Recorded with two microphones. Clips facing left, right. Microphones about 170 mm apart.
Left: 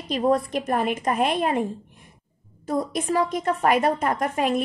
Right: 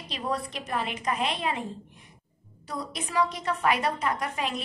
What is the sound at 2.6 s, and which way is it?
A woman's voice, 50° left (ahead or behind).